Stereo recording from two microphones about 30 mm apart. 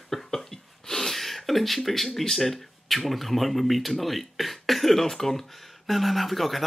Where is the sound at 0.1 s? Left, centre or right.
Centre.